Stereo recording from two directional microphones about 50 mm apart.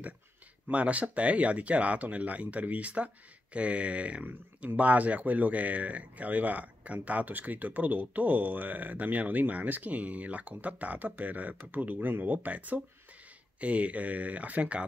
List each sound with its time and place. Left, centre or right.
0.7 s speech: right
4.2 s speech: right